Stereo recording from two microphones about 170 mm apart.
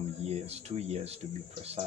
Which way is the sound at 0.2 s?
40° right (ahead or behind).